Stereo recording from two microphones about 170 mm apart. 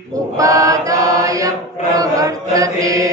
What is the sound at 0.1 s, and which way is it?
Chant, 20° right (ahead or behind).